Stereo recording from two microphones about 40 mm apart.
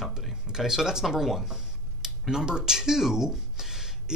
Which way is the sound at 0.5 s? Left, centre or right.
Centre.